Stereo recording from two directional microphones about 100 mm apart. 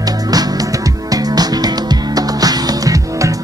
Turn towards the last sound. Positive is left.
turn(degrees=-35)  # may be behind; listen again after turning